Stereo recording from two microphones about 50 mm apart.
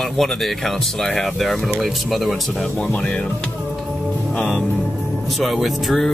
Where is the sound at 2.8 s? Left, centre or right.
Centre.